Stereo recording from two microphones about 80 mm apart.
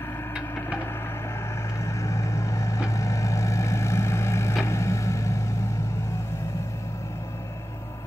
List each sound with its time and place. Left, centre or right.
1.9 s vehicle: left